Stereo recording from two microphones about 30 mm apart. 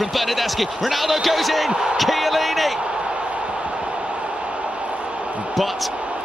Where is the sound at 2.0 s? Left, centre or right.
Centre.